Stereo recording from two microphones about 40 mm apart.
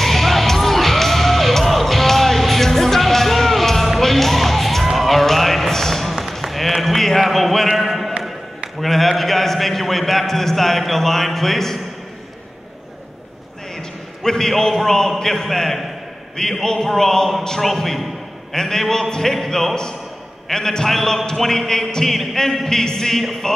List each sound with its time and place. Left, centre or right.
0.0 s music: centre
7.6 s a sound: centre
8.8 s a man's voice: centre
13.7 s a man's voice: centre
19.7 s a man's voice: centre